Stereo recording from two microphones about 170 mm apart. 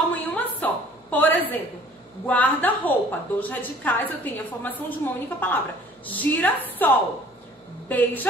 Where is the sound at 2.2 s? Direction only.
10° left (ahead or behind).